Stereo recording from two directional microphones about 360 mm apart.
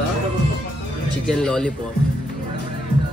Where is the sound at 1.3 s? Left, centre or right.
Centre.